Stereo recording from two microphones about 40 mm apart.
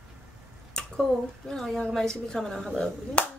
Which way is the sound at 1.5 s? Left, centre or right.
Centre.